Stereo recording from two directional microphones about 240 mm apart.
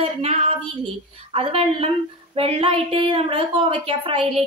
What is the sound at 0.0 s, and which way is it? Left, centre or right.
Child singing, right.